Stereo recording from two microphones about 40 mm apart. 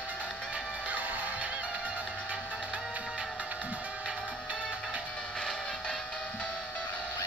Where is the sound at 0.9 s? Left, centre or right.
Right.